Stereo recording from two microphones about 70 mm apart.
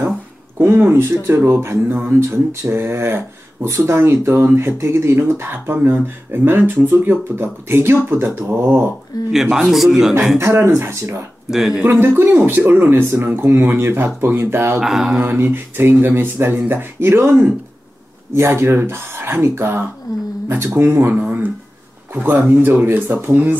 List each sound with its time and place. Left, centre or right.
0.6 s speech: right
9.3 s speech: centre
9.8 s mantra: centre
10.3 s speech: right
11.5 s mantra: centre
11.8 s speech: right
14.8 s mantra: centre
15.2 s speech: right
21.2 s a sound: right
22.1 s speech: right